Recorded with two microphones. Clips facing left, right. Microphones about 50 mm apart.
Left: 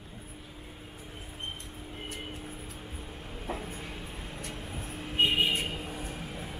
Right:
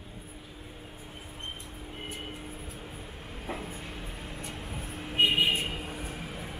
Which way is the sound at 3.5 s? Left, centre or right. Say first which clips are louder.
Even; right.